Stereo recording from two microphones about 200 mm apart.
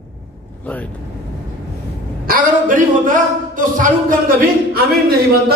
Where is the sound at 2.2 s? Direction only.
45° right (ahead or behind).